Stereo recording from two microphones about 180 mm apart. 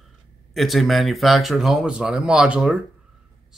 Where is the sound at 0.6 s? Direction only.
Centre (ahead or behind).